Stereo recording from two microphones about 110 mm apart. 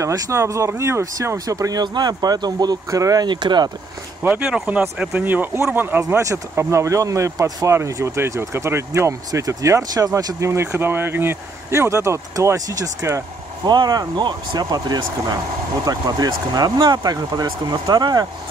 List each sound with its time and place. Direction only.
0.0 s speech: 30° right (ahead or behind)
3.3 s speech: 45° right (ahead or behind)
4.2 s speech: 10° right (ahead or behind); by 18.2 s 35° right (ahead or behind)